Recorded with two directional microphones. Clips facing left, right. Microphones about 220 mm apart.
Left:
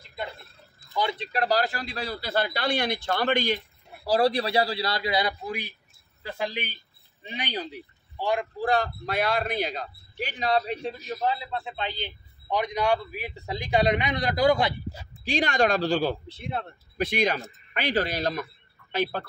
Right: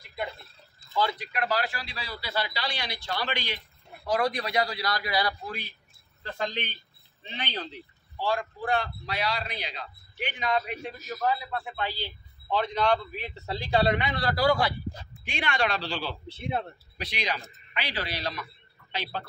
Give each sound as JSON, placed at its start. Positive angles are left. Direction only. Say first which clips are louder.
{"t": 0.9, "sound": "a man's voice", "louder": "left 1 dB", "side_deg": 25}
{"t": 4.0, "sound": "a man's voice", "louder": "left 5 dB", "side_deg": 30}
{"t": 8.5, "sound": "a man's voice", "louder": "left 4 dB", "side_deg": 40}
{"t": 15.2, "sound": "a man's voice", "louder": "left 6 dB", "side_deg": 40}